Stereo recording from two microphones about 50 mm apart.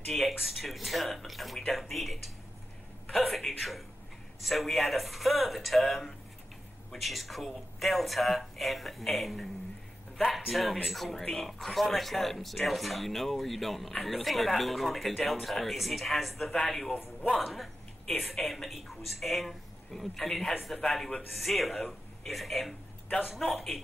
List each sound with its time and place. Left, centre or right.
0.1 s speech: centre
17.5 s a sound: centre
18.5 s speech: centre
23.0 s a man's voice: left